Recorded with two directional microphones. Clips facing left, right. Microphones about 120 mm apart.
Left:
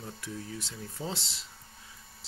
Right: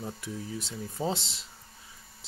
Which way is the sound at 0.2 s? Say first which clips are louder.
Right 3 dB; 15° right (ahead or behind).